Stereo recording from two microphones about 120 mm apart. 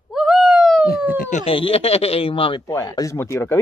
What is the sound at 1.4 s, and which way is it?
Speech, 50° left (ahead or behind).